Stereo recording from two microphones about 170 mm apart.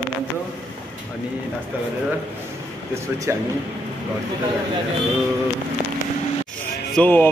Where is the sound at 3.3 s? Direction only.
15° right (ahead or behind).